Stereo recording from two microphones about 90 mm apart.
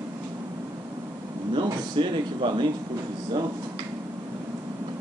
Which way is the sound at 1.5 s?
60° right (ahead or behind).